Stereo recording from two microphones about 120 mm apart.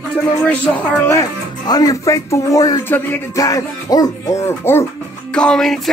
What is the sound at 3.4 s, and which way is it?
Speech, 30° left (ahead or behind).